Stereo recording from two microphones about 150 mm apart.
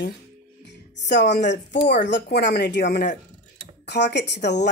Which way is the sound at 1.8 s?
85° left.